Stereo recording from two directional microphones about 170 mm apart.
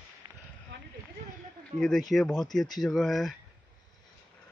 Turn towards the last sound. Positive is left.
turn(degrees=0)  # may be behind; listen again after turning